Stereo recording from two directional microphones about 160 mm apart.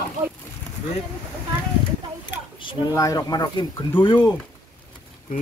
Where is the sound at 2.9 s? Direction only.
20° left (ahead or behind).